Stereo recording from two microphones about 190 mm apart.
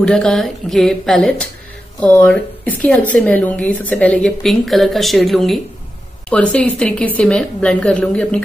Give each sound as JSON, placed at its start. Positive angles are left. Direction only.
{"t": 0.0, "sound": "speech", "side_deg": 5}